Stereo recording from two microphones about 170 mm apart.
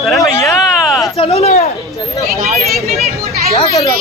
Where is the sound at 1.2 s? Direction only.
40° left (ahead or behind).